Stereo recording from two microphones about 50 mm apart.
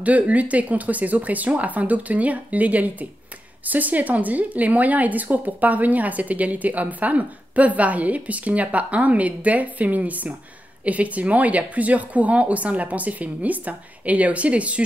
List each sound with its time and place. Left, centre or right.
0.0 s a woman's voice: right